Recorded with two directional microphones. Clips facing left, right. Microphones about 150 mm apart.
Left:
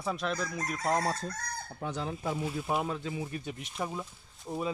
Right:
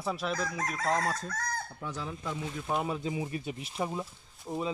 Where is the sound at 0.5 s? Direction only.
90° right.